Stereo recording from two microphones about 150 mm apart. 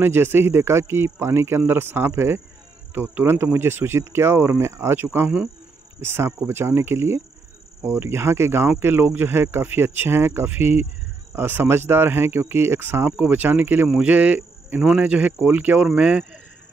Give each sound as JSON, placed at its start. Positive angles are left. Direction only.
{"t": 0.0, "sound": "speech", "side_deg": -15}